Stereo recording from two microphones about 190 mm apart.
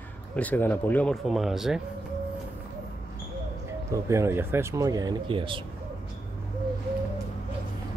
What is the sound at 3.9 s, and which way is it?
Speech, 15° right (ahead or behind).